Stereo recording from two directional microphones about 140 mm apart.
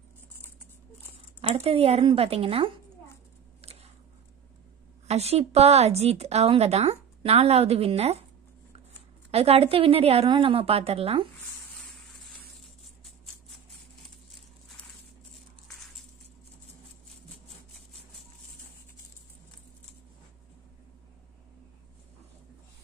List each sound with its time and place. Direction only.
1.5 s speech: 45° right (ahead or behind)
3.6 s a sound: 50° right (ahead or behind)
5.0 s speech: 50° right (ahead or behind)
9.3 s speech: 45° right (ahead or behind)